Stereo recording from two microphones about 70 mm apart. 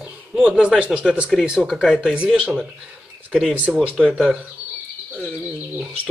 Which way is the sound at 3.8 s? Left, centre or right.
Centre.